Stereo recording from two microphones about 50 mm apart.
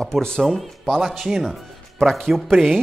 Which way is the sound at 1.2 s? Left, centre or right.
Centre.